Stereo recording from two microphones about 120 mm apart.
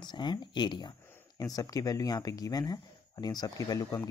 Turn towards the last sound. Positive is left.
turn(degrees=30)  # may be behind; listen again after turning